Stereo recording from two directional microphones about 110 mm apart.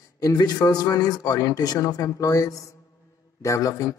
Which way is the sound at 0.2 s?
35° left (ahead or behind).